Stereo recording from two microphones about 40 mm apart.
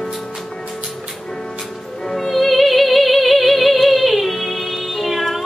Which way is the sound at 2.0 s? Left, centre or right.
Centre.